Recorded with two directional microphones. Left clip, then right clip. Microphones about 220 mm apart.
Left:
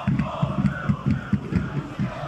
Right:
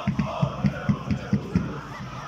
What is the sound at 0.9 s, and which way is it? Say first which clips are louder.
Music: even; centre (ahead or behind).